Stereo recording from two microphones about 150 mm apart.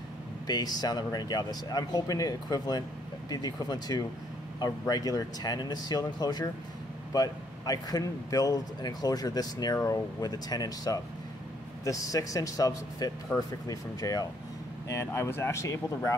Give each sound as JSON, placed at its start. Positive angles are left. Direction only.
{"t": 0.5, "sound": "a man's voice", "side_deg": 25}